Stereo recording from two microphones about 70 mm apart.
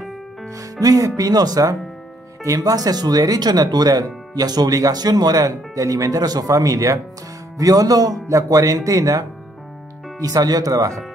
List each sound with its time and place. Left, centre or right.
0.6 s speech: right
10.2 s speech: right